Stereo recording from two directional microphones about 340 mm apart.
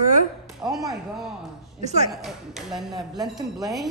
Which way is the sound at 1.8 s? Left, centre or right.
Centre.